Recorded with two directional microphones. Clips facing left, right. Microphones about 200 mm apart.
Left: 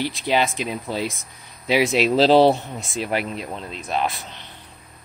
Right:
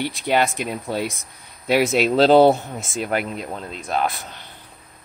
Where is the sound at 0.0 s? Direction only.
55° right (ahead or behind).